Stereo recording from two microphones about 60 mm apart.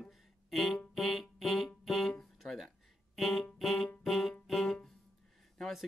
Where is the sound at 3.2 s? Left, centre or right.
Centre.